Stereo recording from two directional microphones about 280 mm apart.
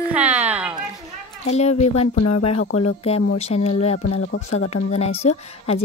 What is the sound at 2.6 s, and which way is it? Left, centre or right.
Speech, left.